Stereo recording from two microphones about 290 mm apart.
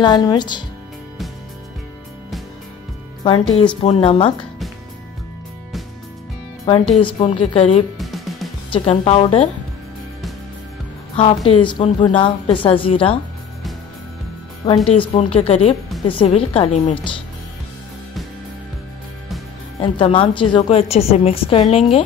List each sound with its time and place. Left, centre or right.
0.0 s speech: centre
3.3 s a woman's voice: centre
6.9 s a woman's voice: centre
8.0 s music: centre
8.7 s a woman's voice: left
11.1 s a woman's voice: centre
14.9 s a woman's voice: centre
19.8 s a woman's voice: centre